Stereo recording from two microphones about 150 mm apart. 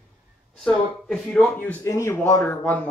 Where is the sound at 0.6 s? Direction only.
Centre (ahead or behind).